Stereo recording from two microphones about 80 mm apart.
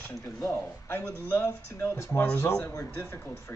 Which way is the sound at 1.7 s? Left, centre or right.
Left.